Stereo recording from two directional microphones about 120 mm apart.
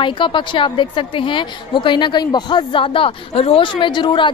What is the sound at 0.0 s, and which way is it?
A woman's voice, 45° left (ahead or behind).